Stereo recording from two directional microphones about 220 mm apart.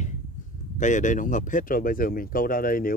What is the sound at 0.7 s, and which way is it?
Speech, 35° left (ahead or behind).